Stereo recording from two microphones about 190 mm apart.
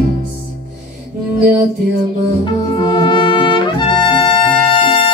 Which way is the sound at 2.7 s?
25° left (ahead or behind).